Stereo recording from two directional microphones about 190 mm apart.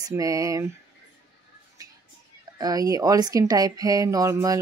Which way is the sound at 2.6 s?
20° right (ahead or behind).